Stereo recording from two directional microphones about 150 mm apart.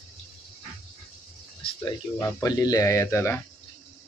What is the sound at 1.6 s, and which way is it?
Speech, 25° left (ahead or behind).